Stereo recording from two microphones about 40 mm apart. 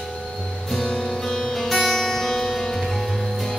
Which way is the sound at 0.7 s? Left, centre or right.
Centre.